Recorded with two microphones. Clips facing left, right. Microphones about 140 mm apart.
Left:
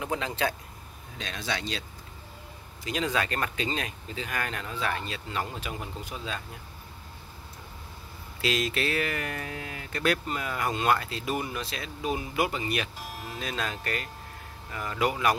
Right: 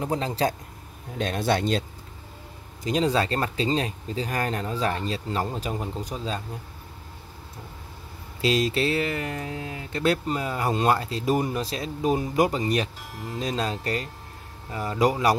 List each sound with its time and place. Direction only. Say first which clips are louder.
0.0 s speech: right 4 dB; 35° right (ahead or behind)
1.1 s speech: right 10 dB; 50° right (ahead or behind)
2.8 s speech: right 6 dB; 35° right (ahead or behind)
8.4 s speech: right 5 dB; 35° right (ahead or behind)